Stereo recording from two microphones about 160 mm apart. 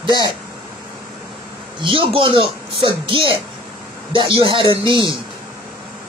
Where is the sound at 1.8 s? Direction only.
35° right (ahead or behind).